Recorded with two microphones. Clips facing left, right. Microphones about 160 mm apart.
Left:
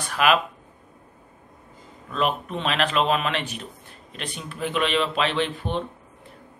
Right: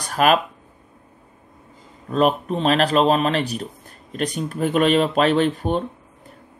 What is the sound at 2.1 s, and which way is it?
Speech, 40° right (ahead or behind).